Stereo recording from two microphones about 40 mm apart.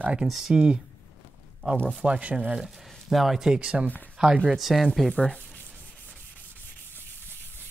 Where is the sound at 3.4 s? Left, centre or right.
Right.